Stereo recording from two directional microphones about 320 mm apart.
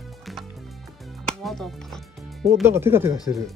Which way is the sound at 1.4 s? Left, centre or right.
Centre.